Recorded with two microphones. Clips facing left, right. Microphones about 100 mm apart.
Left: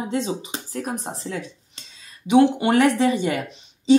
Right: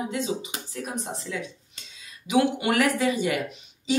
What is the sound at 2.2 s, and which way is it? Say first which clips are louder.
Speech: left 6 dB; 30° left (ahead or behind).